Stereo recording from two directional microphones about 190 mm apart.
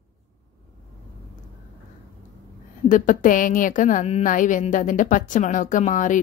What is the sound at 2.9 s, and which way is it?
A woman's voice, 45° left (ahead or behind).